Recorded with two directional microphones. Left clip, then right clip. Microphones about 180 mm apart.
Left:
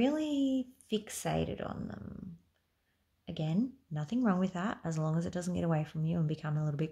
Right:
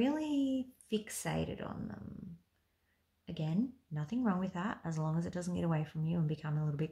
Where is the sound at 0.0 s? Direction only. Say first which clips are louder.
Left 3 dB; 45° left (ahead or behind).